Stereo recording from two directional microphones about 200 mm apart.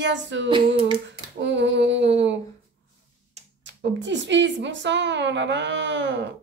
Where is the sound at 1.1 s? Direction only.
65° right (ahead or behind).